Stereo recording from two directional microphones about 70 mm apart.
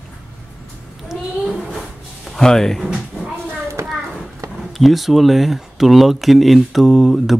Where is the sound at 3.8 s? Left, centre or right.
Right.